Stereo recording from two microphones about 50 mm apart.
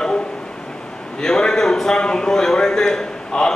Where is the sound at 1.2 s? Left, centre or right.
Centre.